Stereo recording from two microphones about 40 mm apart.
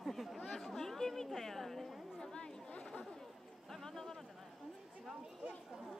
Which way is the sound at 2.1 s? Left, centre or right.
Centre.